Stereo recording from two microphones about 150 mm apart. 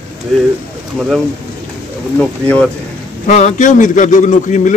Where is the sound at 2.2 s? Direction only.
10° left (ahead or behind).